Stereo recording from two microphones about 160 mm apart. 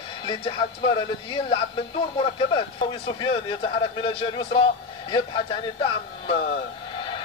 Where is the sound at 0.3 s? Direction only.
30° left (ahead or behind).